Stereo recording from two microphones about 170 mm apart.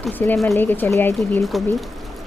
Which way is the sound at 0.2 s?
10° left (ahead or behind).